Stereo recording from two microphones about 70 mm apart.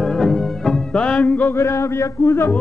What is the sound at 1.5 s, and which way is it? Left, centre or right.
Music, left.